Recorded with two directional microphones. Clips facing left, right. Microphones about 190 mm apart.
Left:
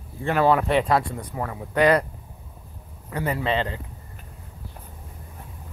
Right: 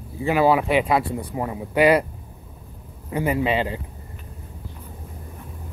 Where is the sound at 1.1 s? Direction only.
20° right (ahead or behind).